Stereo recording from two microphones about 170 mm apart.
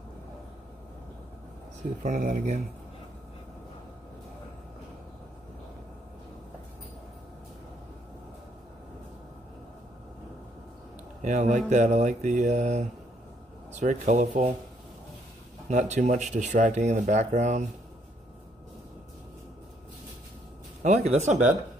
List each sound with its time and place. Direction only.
2.0 s speech: 50° right (ahead or behind)
11.2 s speech: 45° right (ahead or behind)
15.7 s speech: 45° right (ahead or behind)
20.8 s speech: 40° right (ahead or behind)